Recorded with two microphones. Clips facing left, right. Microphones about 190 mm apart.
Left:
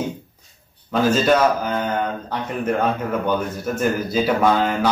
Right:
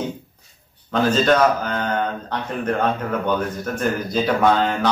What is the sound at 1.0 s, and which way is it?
Speech, 10° left (ahead or behind).